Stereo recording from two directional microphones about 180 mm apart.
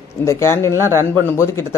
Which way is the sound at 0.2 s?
15° left (ahead or behind).